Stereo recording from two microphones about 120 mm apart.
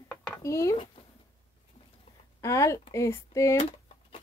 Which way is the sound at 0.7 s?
45° left (ahead or behind).